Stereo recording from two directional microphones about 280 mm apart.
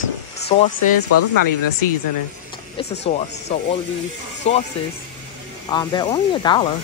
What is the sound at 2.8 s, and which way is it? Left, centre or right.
Speech, left.